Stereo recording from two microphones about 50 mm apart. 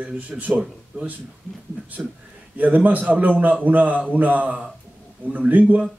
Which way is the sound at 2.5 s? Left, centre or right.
Right.